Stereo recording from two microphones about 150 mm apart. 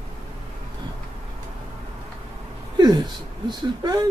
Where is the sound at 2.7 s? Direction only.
25° right (ahead or behind).